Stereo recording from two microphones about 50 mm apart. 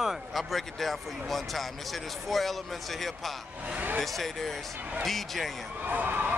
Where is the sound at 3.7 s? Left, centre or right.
Right.